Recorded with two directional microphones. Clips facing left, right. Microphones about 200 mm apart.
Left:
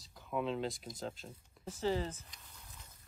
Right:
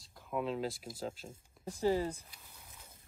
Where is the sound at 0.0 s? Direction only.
Centre (ahead or behind).